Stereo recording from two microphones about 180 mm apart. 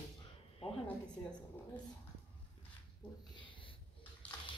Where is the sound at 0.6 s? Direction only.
30° left (ahead or behind).